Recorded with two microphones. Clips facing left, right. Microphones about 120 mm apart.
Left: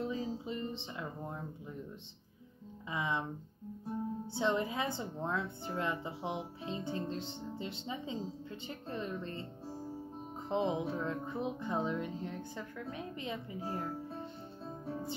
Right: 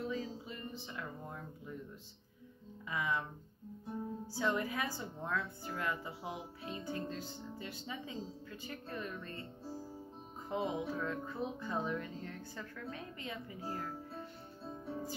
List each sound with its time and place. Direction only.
0.0 s music: 20° left (ahead or behind)
2.9 s a woman's voice: 25° left (ahead or behind)
4.3 s a woman's voice: 25° left (ahead or behind)
10.5 s a woman's voice: 25° left (ahead or behind)